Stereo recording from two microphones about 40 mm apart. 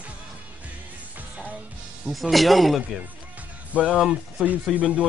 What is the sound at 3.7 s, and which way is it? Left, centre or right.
Speech, right.